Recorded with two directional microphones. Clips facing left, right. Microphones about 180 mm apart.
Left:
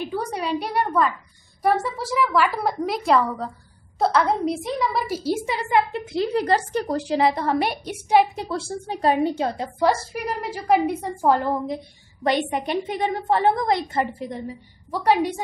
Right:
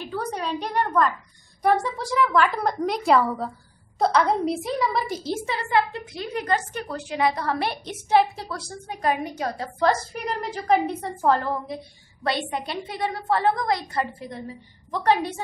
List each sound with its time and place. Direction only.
0.0 s a woman's voice: 10° left (ahead or behind)
9.8 s a woman's voice: 10° left (ahead or behind)
14.9 s a woman's voice: 10° left (ahead or behind)